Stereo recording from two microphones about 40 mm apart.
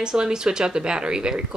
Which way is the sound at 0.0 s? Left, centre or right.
Centre.